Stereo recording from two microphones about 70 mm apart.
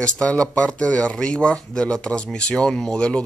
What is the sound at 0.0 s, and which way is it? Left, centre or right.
Speech, centre.